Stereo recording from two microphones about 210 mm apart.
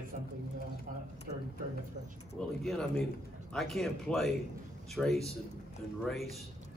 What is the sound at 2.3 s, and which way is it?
Speech, centre (ahead or behind).